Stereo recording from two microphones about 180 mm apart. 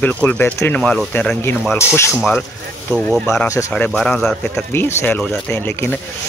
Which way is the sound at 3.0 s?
5° left (ahead or behind).